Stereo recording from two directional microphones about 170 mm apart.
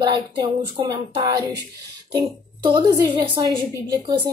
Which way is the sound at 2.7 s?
30° right (ahead or behind).